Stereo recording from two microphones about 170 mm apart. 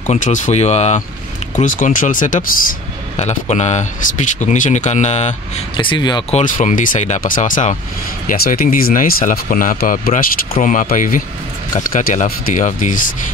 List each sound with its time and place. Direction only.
0.0 s speech: 45° left (ahead or behind)
3.2 s speech: 40° left (ahead or behind)
5.8 s speech: 25° left (ahead or behind)
6.3 s speech: 50° left (ahead or behind)